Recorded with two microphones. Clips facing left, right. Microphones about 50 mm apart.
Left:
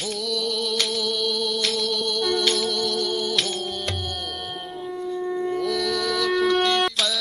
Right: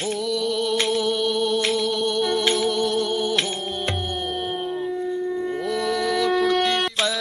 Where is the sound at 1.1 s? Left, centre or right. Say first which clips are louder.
Right 4 dB; centre.